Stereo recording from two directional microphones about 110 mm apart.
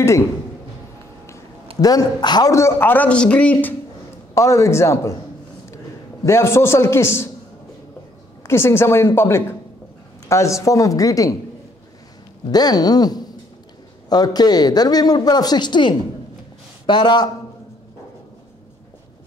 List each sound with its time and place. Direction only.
1.8 s speech: 35° left (ahead or behind)
2.5 s a man's voice: 25° left (ahead or behind)
4.4 s a woman's voice: 25° left (ahead or behind)
6.2 s a woman's voice: 25° left (ahead or behind)
8.5 s a woman's voice: 20° left (ahead or behind)
12.4 s speech: 35° left (ahead or behind)